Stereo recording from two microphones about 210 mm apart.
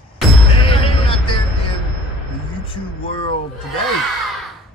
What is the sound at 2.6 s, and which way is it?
Speech, 25° left (ahead or behind).